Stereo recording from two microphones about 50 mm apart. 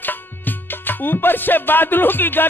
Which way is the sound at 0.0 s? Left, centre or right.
Left.